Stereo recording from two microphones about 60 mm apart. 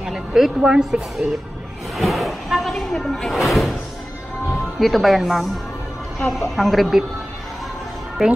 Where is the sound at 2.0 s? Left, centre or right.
Centre.